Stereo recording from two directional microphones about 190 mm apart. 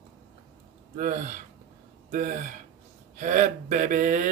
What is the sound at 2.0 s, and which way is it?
Speech, 40° right (ahead or behind).